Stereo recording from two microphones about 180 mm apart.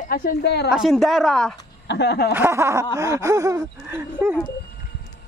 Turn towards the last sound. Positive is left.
turn(degrees=-15)  # may be behind; listen again after turning